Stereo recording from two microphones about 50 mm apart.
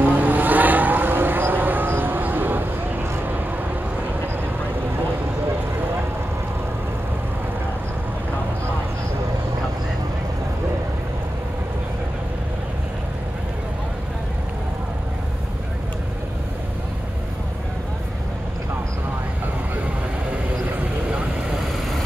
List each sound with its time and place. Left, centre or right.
0.0 s vehicle: right